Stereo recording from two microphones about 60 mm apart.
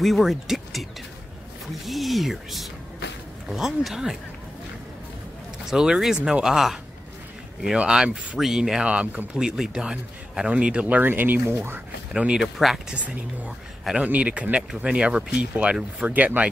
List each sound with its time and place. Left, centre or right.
0.0 s speech: centre
5.7 s speech: centre; by 11.8 s right
12.4 s speech: centre
13.9 s speech: right